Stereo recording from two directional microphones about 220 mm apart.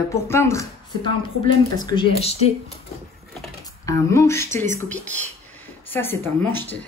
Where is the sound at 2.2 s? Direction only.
30° left (ahead or behind).